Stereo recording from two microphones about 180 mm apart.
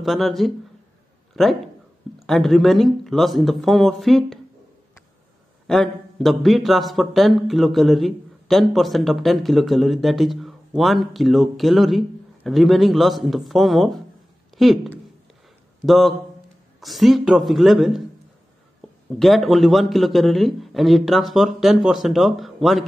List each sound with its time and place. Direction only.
0.0 s a man's voice: centre (ahead or behind)
5.7 s a man's voice: centre (ahead or behind)
19.1 s a man's voice: centre (ahead or behind)